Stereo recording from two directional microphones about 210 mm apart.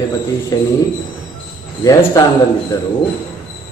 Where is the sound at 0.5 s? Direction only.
15° left (ahead or behind).